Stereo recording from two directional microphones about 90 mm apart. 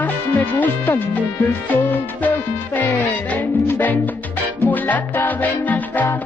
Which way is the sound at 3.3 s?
20° left (ahead or behind).